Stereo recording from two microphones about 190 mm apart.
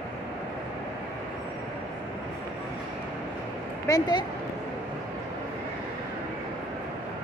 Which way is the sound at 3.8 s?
20° left (ahead or behind).